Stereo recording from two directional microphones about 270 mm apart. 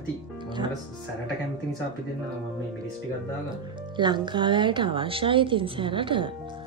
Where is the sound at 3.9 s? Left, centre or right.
Centre.